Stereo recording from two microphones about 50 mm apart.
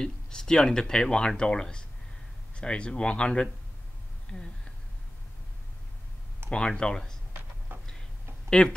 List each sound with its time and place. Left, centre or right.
0.0 s speech: centre
6.5 s speech: centre
8.5 s speech: centre